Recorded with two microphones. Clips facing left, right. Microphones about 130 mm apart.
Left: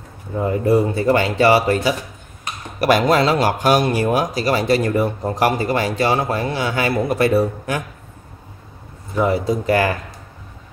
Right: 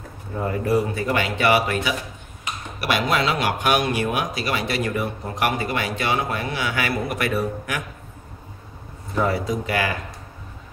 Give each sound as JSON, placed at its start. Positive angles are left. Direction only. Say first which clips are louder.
{"t": 0.4, "sound": "speech", "louder": "left 5 dB", "side_deg": 25}
{"t": 9.1, "sound": "a man's voice", "louder": "left 4 dB", "side_deg": 20}
{"t": 9.4, "sound": "speech", "louder": "left 6 dB", "side_deg": 35}